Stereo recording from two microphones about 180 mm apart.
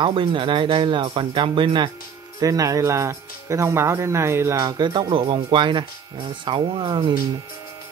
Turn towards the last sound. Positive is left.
turn(degrees=-25)  # may be behind; listen again after turning